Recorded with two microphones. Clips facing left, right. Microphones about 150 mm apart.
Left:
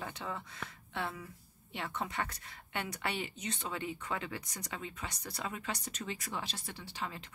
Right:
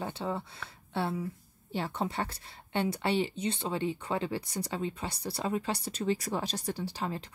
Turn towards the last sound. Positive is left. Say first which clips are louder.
# right 7 dB
turn(degrees=-35)  # may be behind; listen again after turning